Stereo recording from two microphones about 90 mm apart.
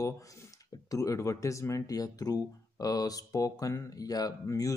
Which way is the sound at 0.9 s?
40° left (ahead or behind).